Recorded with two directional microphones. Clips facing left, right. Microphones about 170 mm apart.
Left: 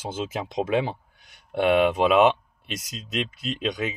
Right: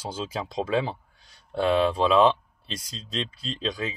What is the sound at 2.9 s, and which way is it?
Speech, 30° right (ahead or behind).